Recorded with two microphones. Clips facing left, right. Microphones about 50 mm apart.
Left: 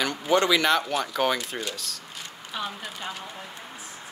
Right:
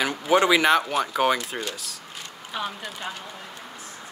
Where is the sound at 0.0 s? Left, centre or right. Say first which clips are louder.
Right 2 dB; centre.